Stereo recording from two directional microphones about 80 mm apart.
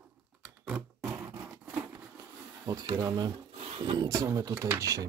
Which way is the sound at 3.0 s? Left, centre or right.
Right.